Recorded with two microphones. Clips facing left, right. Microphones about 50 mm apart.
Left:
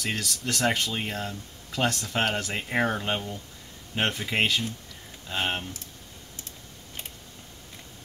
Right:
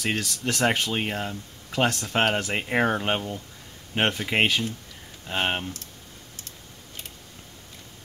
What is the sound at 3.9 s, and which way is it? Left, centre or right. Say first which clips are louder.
Speech: right 3 dB; right.